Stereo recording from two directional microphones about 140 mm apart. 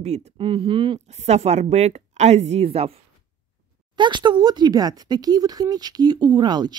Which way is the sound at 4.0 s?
35° right (ahead or behind).